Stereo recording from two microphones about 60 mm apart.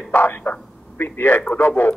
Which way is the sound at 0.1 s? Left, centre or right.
Left.